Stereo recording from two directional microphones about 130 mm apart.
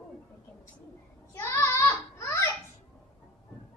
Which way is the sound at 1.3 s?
25° left (ahead or behind).